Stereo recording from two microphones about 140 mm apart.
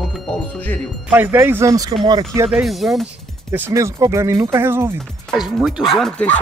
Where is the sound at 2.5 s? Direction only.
Centre (ahead or behind).